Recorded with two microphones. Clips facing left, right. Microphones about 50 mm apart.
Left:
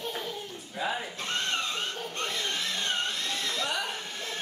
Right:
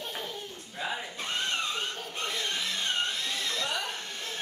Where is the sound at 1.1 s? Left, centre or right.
Centre.